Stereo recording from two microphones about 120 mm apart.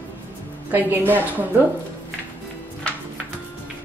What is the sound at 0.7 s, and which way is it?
Speech, 15° right (ahead or behind).